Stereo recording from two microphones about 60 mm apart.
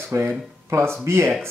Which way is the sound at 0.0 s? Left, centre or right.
Right.